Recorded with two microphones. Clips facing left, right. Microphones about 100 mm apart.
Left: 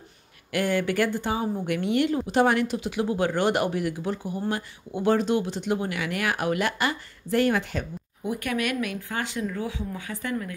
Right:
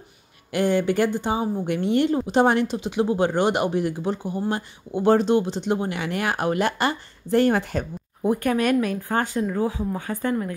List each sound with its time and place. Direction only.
0.5 s speech: 25° right (ahead or behind); by 10.1 s 45° right (ahead or behind)